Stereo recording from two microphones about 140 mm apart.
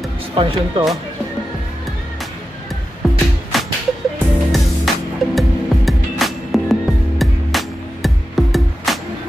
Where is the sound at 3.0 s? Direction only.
Centre (ahead or behind).